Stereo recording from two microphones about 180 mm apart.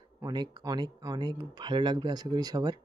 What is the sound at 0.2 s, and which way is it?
Speech, 25° right (ahead or behind).